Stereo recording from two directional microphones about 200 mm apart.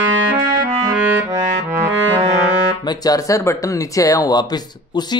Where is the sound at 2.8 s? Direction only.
20° left (ahead or behind).